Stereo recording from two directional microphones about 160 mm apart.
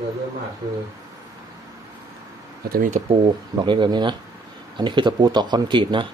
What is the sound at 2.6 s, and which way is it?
Speech, 60° right (ahead or behind).